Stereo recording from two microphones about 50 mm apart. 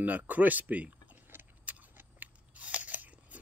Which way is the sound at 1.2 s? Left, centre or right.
Right.